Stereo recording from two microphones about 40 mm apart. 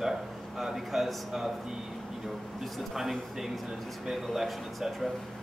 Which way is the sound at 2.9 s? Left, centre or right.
Centre.